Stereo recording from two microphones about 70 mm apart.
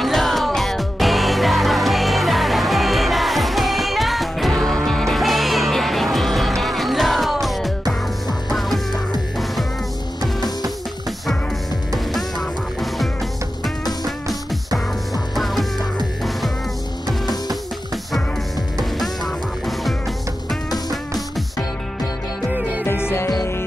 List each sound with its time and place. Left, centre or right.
0.0 s music: centre
11.9 s music: centre
15.3 s music: centre
18.9 s music: centre
22.5 s music: centre
22.8 s music: left